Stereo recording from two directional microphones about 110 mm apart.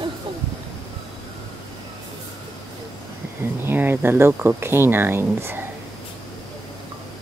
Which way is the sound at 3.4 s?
20° right (ahead or behind).